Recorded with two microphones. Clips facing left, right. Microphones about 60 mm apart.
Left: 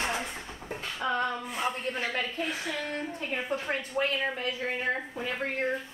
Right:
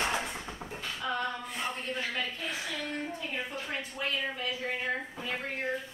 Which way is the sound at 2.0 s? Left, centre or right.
Left.